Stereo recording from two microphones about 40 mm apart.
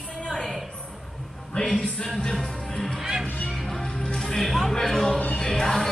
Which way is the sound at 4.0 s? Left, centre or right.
Centre.